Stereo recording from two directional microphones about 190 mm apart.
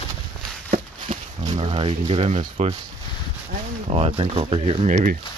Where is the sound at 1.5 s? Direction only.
30° right (ahead or behind).